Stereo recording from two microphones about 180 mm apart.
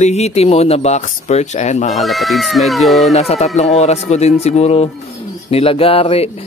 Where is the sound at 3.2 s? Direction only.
35° left (ahead or behind).